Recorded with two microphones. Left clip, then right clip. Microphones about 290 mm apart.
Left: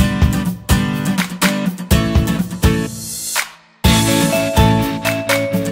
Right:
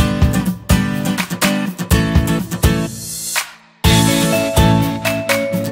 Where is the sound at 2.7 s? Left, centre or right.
Centre.